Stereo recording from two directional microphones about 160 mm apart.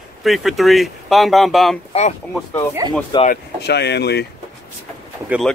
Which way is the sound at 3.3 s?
90° left.